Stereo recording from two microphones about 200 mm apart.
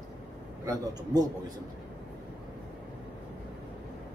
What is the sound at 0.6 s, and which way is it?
Speech, 20° right (ahead or behind).